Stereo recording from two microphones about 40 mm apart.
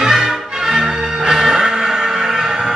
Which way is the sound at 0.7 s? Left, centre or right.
Centre.